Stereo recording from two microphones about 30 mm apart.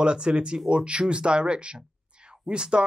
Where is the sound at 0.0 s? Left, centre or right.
Right.